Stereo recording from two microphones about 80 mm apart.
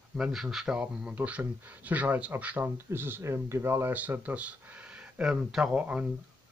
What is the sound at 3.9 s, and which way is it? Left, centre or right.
Speech, right.